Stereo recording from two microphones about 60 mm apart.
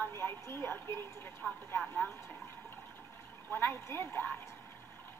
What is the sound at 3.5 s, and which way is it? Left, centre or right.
Speech, left.